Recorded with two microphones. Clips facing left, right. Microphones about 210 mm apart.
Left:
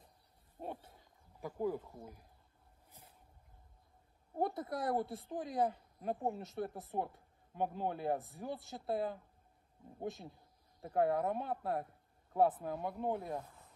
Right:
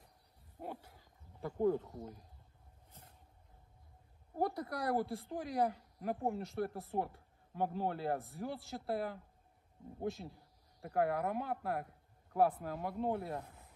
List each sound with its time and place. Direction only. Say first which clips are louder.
0.6 s a sound: left 1 dB; 25° left (ahead or behind)
1.4 s speech: right 4 dB; 10° left (ahead or behind)
4.4 s speech: even; 20° left (ahead or behind)